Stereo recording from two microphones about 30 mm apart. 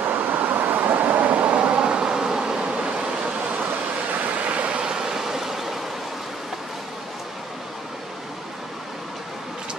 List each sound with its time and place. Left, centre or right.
0.0 s vehicle: right
1.2 s a sound: right
1.8 s bee: right
4.1 s vehicle: right
4.7 s vehicle: right